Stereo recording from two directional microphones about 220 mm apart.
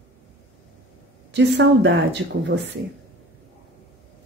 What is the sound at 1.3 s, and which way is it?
Speech, 55° right (ahead or behind).